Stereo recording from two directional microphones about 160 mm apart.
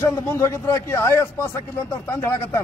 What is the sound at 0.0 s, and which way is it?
Speech, 15° left (ahead or behind).